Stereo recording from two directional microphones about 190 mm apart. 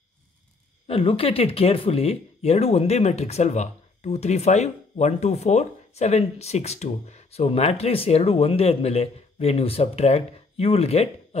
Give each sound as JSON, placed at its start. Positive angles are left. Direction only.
{"t": 0.8, "sound": "speech", "side_deg": 30}